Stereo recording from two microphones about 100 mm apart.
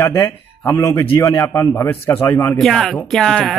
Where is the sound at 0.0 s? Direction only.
30° left (ahead or behind).